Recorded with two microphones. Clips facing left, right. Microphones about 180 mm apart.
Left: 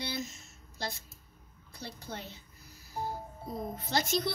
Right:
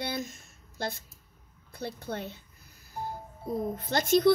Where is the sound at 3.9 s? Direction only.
55° right (ahead or behind).